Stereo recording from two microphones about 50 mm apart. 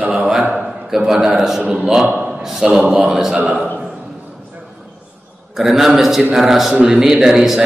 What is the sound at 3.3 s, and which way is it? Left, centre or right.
Speech, right.